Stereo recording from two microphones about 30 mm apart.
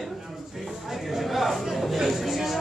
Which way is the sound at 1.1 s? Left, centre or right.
Centre.